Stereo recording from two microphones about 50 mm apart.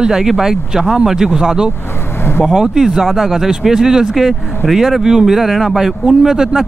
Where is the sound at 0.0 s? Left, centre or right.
Centre.